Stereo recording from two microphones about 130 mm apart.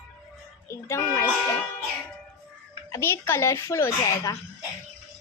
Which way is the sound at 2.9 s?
20° left (ahead or behind).